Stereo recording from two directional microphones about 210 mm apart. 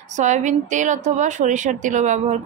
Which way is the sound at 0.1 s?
35° right (ahead or behind).